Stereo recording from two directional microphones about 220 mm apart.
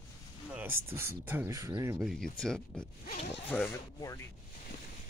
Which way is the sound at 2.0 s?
Centre (ahead or behind).